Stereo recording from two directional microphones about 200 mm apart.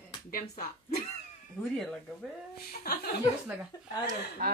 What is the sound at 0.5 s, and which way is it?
Speech, 45° left (ahead or behind).